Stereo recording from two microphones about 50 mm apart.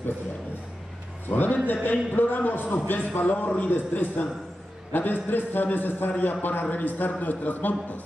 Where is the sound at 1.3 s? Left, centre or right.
Left.